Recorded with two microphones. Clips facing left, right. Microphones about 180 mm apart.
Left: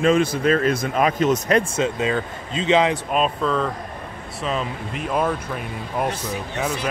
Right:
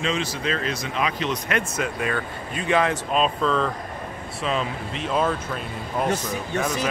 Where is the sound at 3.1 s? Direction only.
5° left (ahead or behind).